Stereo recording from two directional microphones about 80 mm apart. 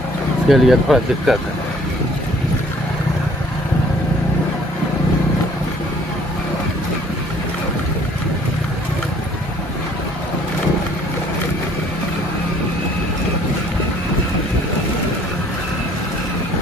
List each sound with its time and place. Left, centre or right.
0.5 s speech: centre